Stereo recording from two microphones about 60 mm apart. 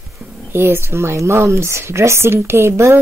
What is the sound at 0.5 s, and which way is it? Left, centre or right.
Speech, right.